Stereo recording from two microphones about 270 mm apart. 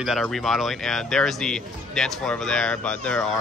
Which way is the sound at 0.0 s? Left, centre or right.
Centre.